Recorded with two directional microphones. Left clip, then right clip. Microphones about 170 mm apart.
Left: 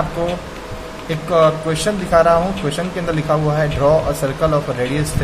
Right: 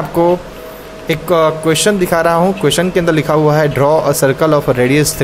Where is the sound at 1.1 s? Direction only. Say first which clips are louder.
Right 2 dB; 60° right (ahead or behind).